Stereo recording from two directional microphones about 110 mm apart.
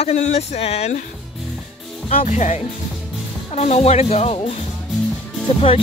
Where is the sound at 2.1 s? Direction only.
80° left.